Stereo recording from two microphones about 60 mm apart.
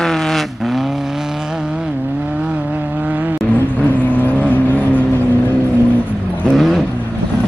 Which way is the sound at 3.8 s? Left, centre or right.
Left.